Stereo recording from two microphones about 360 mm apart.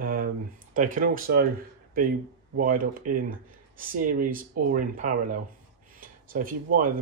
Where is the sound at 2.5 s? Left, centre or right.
Right.